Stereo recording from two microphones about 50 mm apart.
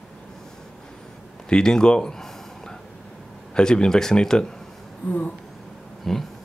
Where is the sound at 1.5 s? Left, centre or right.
Centre.